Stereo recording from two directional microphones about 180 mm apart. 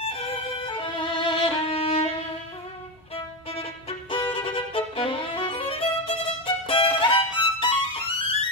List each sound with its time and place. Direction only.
0.0 s violin: 30° left (ahead or behind)
4.1 s violin: 30° left (ahead or behind)